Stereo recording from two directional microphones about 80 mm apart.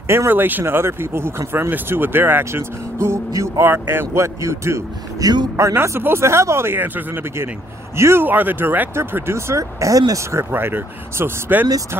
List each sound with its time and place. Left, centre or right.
0.1 s speech: right
5.2 s speech: right
5.6 s speech: right
10.3 s speech: right